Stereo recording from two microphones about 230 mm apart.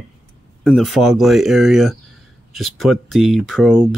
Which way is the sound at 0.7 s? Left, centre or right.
Centre.